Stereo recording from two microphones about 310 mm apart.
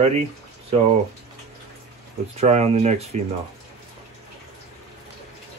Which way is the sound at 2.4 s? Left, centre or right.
Right.